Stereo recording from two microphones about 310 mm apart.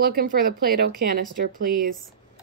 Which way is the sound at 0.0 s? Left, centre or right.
Right.